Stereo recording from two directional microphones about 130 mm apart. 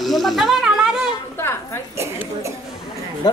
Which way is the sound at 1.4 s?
20° left (ahead or behind).